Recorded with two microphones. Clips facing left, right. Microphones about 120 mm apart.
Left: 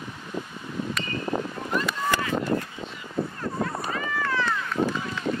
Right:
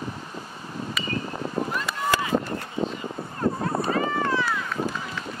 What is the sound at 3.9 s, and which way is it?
Run, 35° right (ahead or behind).